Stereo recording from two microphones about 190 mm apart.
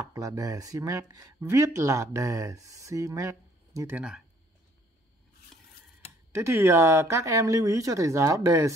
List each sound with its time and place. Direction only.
0.1 s speech: 15° right (ahead or behind)
6.3 s speech: 15° right (ahead or behind)